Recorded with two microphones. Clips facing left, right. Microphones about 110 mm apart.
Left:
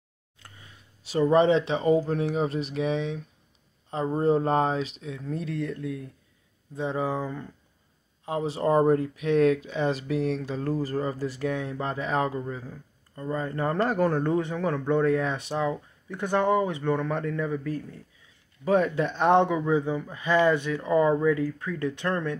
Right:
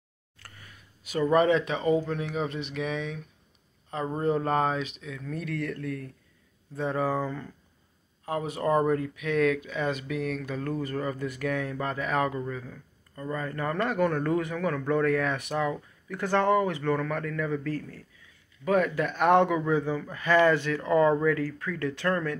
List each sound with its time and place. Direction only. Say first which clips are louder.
0.4 s a man's voice: even; 25° left (ahead or behind)
8.3 s a man's voice: left 2 dB; 30° left (ahead or behind)
17.5 s a man's voice: even; 15° left (ahead or behind)